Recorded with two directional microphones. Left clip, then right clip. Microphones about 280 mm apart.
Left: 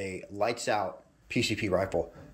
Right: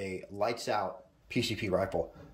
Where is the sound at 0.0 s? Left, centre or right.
Centre.